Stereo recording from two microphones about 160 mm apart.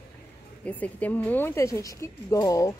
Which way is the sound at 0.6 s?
10° left (ahead or behind).